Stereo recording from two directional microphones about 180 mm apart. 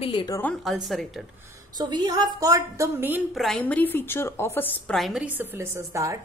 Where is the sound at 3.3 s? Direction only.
5° left (ahead or behind).